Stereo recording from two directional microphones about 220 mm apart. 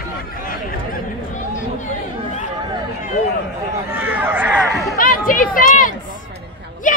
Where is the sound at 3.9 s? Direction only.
10° right (ahead or behind).